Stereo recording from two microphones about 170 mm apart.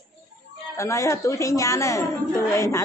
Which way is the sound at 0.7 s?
15° left (ahead or behind).